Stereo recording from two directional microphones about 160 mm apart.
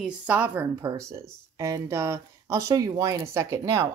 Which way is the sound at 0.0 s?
10° right (ahead or behind).